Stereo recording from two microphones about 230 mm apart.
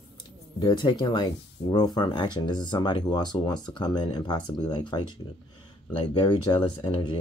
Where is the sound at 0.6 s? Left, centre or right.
Left.